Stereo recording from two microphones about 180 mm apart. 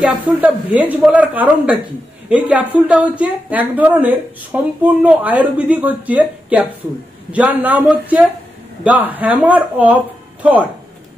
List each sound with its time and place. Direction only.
0.0 s a woman's voice: 10° right (ahead or behind)